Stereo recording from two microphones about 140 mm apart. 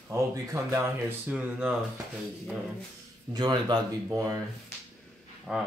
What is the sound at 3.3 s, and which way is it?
A man's voice, 30° right (ahead or behind).